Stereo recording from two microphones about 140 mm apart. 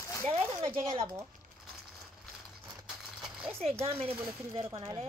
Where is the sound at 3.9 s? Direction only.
45° right (ahead or behind).